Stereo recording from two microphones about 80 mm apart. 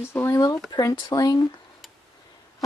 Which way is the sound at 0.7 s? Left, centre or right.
Left.